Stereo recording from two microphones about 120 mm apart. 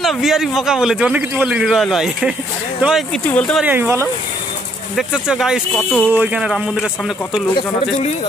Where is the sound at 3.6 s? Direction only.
15° right (ahead or behind).